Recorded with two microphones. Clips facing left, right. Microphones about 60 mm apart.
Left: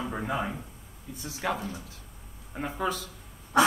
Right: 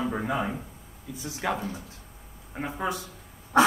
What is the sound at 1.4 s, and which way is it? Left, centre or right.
Speech, right.